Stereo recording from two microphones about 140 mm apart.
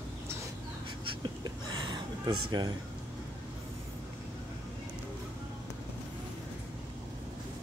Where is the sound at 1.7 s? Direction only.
30° right (ahead or behind).